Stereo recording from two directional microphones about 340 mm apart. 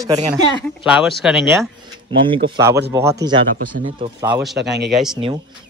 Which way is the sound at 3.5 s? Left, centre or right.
Right.